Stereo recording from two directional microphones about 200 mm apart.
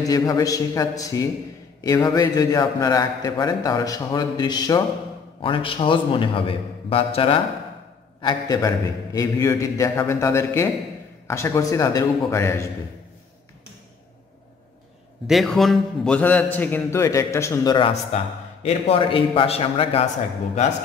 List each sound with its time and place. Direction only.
0.0 s a man's voice: 20° left (ahead or behind)
15.2 s a man's voice: centre (ahead or behind); by 20.1 s 30° left (ahead or behind)